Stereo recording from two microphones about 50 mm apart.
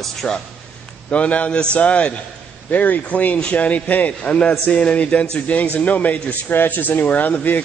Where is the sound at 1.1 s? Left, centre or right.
Left.